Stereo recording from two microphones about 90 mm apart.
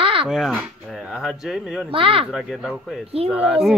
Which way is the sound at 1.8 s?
90° right.